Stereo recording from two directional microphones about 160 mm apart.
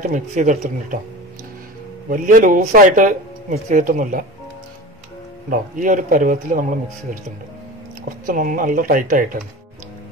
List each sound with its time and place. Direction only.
0.0 s speech: 50° right (ahead or behind)
2.0 s speech: 55° right (ahead or behind)
5.5 s speech: 55° right (ahead or behind)
8.3 s speech: 60° right (ahead or behind)